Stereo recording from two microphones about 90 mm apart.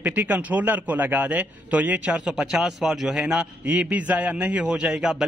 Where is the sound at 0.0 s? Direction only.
20° right (ahead or behind).